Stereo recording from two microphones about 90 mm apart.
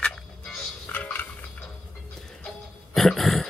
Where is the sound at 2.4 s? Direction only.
5° left (ahead or behind).